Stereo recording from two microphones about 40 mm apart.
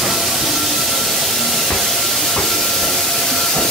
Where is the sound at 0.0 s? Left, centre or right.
Centre.